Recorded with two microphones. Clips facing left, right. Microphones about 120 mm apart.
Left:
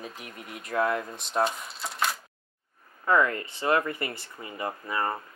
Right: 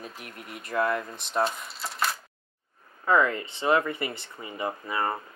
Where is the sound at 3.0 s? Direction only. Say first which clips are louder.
Right 1 dB; 20° right (ahead or behind).